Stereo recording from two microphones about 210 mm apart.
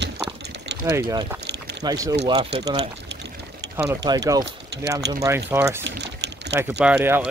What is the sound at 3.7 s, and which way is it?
Speech, 10° right (ahead or behind).